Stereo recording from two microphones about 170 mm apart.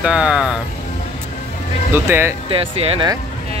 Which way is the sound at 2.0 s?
15° right (ahead or behind).